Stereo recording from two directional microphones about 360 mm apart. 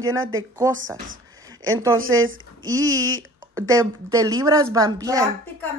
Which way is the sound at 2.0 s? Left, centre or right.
Right.